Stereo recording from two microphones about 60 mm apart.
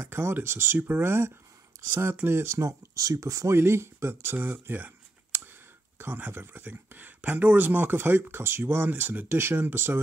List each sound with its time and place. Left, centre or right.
0.0 s speech: right
3.5 s speech: right